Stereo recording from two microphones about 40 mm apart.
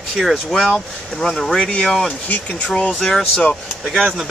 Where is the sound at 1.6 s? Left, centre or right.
Left.